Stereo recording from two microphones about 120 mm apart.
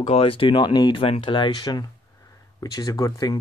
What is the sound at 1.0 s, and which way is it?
Speech, 50° left (ahead or behind).